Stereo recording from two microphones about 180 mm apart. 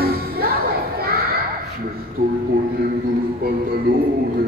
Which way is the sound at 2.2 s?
55° right (ahead or behind).